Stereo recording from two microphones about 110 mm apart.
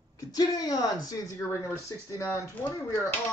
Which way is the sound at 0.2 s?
35° left (ahead or behind).